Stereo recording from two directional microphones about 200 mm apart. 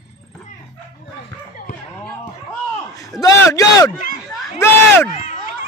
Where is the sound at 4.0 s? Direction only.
40° left (ahead or behind).